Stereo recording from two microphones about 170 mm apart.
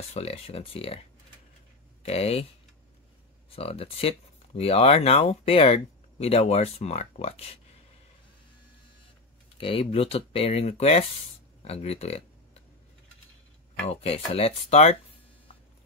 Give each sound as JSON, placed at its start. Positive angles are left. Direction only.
{"t": 0.1, "sound": "speech", "side_deg": 35}
{"t": 2.0, "sound": "speech", "side_deg": 35}
{"t": 3.4, "sound": "speech", "side_deg": 35}
{"t": 9.6, "sound": "speech", "side_deg": 30}
{"t": 13.8, "sound": "speech", "side_deg": 35}